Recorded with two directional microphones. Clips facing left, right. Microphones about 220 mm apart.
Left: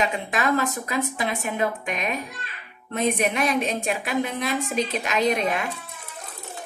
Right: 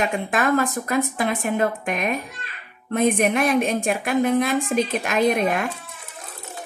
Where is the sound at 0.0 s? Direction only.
50° right (ahead or behind).